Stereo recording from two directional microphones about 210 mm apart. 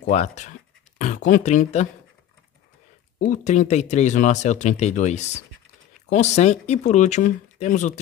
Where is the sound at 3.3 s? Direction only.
35° left (ahead or behind).